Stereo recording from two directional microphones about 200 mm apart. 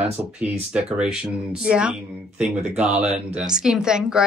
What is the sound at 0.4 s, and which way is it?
A woman's voice, 5° right (ahead or behind).